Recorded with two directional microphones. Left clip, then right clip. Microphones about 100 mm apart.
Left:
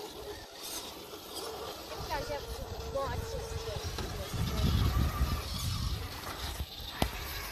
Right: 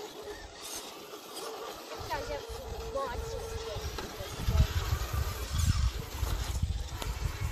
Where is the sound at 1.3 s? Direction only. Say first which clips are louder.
Even; 5° right (ahead or behind).